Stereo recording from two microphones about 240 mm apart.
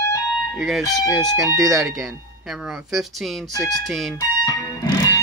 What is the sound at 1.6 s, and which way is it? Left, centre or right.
Speech, centre.